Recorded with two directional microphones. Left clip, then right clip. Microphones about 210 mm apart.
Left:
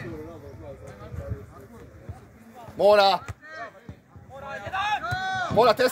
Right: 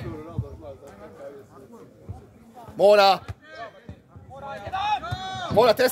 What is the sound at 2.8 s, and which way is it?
Speech, 50° right (ahead or behind).